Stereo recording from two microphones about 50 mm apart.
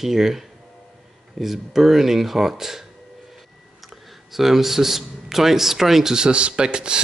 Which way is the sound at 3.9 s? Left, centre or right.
Centre.